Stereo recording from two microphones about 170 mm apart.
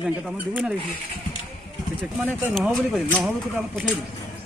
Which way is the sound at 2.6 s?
5° right (ahead or behind).